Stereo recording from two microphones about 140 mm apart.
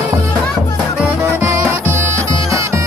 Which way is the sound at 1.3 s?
20° right (ahead or behind).